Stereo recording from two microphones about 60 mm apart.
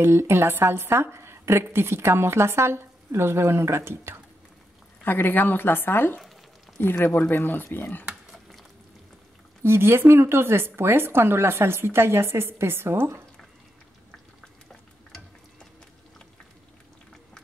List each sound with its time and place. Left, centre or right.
0.0 s a woman's voice: right
5.0 s a woman's voice: left
9.6 s a woman's voice: right